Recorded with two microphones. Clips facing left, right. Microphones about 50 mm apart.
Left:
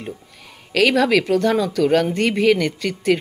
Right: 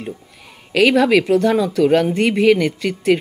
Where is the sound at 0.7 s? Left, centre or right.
Centre.